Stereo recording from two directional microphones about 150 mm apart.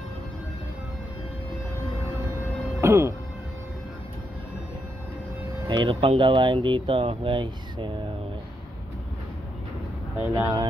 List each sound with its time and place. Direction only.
2.8 s speech: 20° right (ahead or behind)
5.7 s speech: 35° right (ahead or behind)
10.3 s speech: 25° right (ahead or behind)